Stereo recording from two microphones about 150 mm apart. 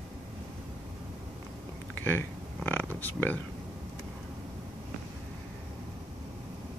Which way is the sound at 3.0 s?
10° left (ahead or behind).